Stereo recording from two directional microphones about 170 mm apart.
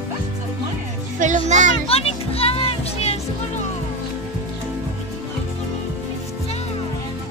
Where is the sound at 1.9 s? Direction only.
35° left (ahead or behind).